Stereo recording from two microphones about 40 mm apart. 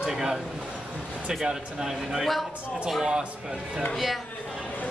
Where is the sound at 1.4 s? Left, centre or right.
Centre.